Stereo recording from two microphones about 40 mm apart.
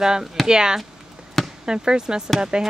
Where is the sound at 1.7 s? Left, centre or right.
Centre.